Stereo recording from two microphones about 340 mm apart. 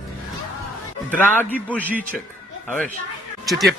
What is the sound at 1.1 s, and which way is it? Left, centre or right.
Speech, centre.